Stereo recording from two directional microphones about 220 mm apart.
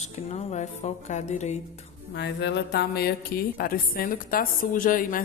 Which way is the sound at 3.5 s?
40° left (ahead or behind).